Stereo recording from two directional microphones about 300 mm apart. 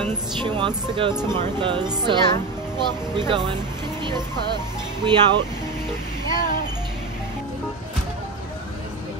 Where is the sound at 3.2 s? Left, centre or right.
Centre.